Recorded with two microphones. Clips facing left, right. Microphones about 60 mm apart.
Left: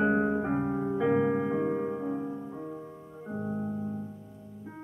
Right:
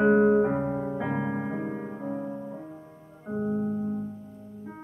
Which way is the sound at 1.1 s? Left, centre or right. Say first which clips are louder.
Left 4 dB; centre.